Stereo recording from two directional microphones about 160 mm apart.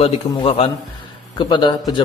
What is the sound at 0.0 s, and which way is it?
A man's voice, 35° left (ahead or behind).